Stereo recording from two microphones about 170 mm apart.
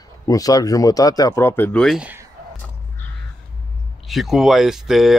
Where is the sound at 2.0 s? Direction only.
10° right (ahead or behind).